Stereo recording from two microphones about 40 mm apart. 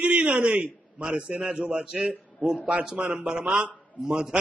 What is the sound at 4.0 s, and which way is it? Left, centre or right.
Speech, centre.